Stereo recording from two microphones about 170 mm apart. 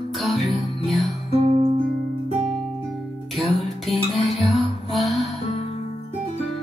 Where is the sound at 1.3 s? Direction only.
35° right (ahead or behind).